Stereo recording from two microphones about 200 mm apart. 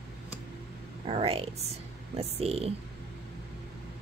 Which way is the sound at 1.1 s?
25° right (ahead or behind).